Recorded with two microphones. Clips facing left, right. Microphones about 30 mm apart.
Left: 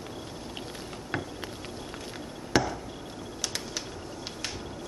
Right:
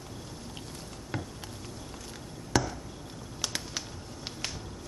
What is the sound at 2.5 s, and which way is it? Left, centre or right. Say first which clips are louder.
Chop: left 3 dB; left.